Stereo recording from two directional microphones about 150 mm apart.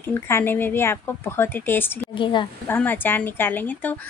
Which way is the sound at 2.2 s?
35° left (ahead or behind).